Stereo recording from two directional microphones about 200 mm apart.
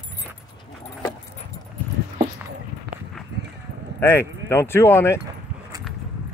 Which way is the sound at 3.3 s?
55° right (ahead or behind).